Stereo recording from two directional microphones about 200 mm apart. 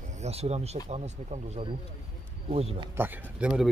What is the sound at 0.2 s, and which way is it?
Speech, 30° right (ahead or behind).